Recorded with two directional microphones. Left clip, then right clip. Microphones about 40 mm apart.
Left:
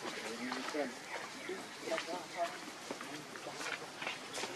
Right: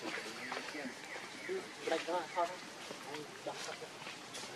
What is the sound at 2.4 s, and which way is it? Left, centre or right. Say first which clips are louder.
Vehicle: right 1 dB; right.